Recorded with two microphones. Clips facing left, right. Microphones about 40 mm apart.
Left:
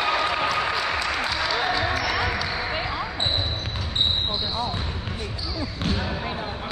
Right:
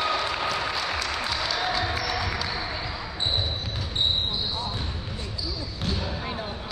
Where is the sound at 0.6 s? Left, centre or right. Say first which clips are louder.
Left 4 dB; left.